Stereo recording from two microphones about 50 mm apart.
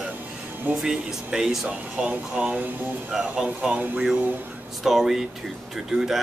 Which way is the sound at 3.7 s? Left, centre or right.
Right.